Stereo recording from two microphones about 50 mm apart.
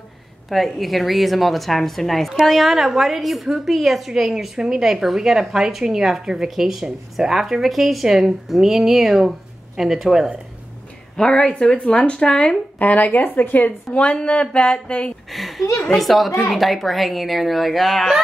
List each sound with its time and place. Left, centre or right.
0.5 s a woman's voice: centre
11.1 s speech: centre
12.7 s speech: left
13.9 s speech: left
15.3 s a woman's voice: centre